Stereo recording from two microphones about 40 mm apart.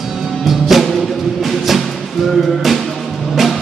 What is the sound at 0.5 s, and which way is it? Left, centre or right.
Music, centre.